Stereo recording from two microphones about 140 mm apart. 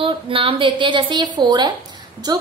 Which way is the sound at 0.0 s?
40° right (ahead or behind).